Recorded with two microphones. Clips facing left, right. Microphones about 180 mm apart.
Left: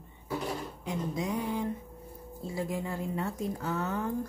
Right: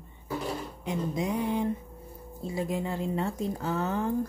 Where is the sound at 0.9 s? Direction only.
20° right (ahead or behind).